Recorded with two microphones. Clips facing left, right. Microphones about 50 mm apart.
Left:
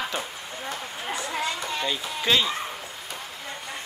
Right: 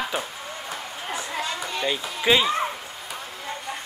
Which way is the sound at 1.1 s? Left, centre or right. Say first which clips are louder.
Even; centre.